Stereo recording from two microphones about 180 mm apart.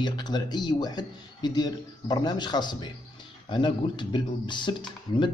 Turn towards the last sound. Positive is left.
turn(degrees=25)  # may be behind; listen again after turning